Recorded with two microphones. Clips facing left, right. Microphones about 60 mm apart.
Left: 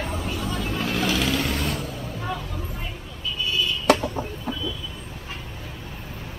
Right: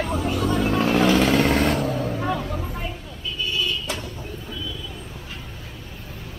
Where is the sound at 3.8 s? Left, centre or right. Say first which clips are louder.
Left 11 dB; left.